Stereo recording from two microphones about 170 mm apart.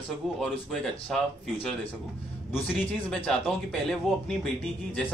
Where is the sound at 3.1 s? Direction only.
5° left (ahead or behind).